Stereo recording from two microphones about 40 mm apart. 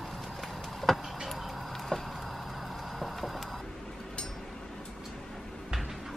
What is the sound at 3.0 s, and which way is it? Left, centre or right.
Printer, centre.